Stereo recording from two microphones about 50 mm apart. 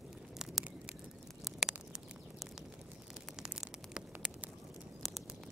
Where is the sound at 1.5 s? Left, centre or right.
Centre.